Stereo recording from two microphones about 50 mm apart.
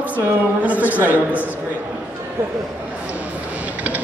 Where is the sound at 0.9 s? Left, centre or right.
Right.